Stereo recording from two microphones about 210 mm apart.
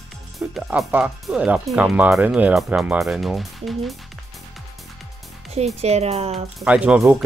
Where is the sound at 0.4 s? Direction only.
Centre (ahead or behind).